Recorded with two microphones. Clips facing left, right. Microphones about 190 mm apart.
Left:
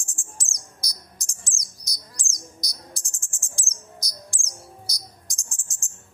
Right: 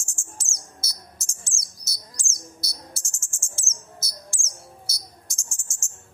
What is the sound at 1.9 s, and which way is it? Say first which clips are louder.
Chirp: even; 15° left (ahead or behind).